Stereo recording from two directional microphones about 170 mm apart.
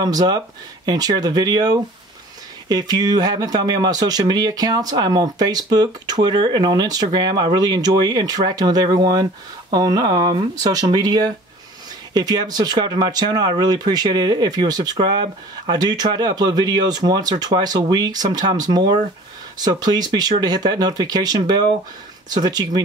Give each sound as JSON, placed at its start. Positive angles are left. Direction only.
{"t": 0.0, "sound": "speech", "side_deg": -25}